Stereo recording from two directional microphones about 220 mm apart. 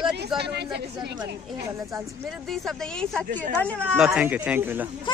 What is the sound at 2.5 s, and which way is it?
Speech, centre (ahead or behind).